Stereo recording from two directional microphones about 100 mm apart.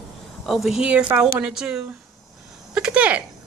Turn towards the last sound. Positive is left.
turn(degrees=-10)  # may be behind; listen again after turning